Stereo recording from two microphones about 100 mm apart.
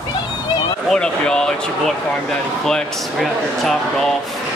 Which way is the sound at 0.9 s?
10° left (ahead or behind).